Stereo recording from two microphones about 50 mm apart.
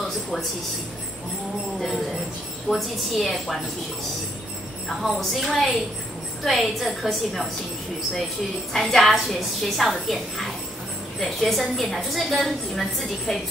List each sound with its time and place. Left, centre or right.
2.7 s a woman's voice: centre
4.8 s a woman's voice: centre
8.7 s a woman's voice: centre